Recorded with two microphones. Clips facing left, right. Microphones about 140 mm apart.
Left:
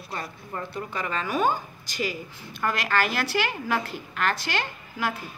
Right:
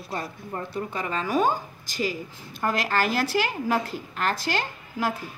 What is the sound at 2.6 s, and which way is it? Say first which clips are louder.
A woman's voice: right 1 dB; 35° right (ahead or behind).